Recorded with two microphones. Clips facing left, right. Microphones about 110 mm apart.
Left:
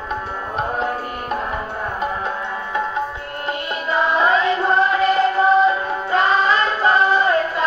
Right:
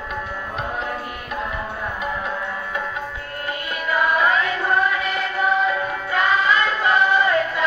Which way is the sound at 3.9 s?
25° left (ahead or behind).